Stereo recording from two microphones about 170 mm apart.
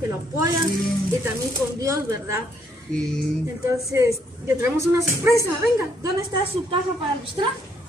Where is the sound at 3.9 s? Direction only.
15° right (ahead or behind).